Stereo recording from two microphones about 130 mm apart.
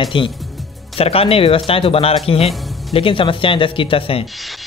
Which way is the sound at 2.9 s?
40° left (ahead or behind).